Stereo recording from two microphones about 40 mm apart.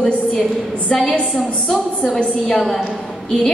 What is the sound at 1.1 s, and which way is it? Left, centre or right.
Speech, left.